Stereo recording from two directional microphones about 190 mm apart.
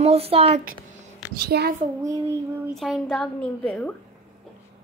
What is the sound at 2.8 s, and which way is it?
A woman's voice, centre (ahead or behind).